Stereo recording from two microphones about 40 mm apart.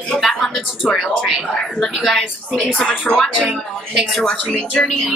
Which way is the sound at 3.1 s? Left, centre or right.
Left.